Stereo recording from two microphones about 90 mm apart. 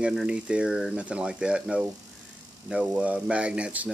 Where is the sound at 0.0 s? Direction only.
10° right (ahead or behind).